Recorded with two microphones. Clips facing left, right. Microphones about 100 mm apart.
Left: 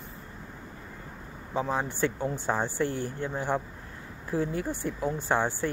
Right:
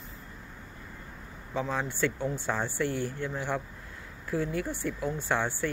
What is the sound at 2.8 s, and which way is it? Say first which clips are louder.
Speech: even; 45° left (ahead or behind).